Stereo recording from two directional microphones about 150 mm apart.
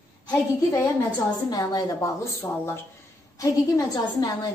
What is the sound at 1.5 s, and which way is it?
A woman's voice, 25° left (ahead or behind).